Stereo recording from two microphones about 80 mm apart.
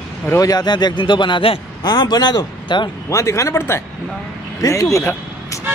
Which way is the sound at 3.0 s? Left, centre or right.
Left.